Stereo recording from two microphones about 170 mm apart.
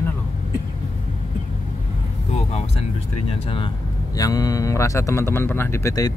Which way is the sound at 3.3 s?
30° left (ahead or behind).